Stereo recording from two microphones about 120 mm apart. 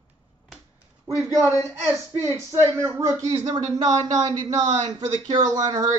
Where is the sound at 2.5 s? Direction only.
20° right (ahead or behind).